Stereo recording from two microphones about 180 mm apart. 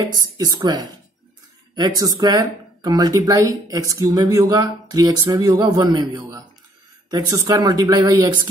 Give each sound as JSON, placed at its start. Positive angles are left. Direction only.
{"t": 0.0, "sound": "speech", "side_deg": -25}
{"t": 1.8, "sound": "speech", "side_deg": -20}